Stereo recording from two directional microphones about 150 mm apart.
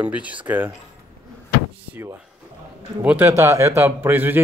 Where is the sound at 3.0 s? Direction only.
15° right (ahead or behind).